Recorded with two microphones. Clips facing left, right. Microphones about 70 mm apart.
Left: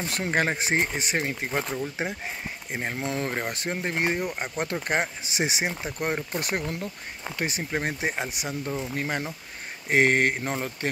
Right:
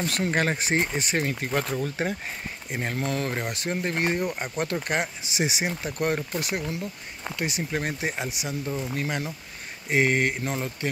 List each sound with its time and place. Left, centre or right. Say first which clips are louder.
0.0 s speech: right 1 dB; left
0.7 s speech: right 1 dB; centre
3.7 s speech: right 1 dB; centre
5.7 s speech: right 2 dB; left
7.3 s speech: even; left
9.8 s speech: left 2 dB; left